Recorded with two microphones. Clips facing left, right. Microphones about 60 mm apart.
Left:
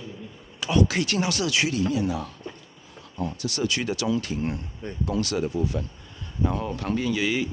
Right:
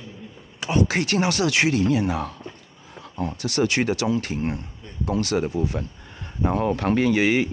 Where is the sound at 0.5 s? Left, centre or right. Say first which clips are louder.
Right 1 dB; right.